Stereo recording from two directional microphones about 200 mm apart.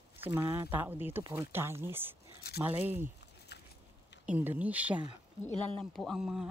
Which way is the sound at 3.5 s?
55° left (ahead or behind).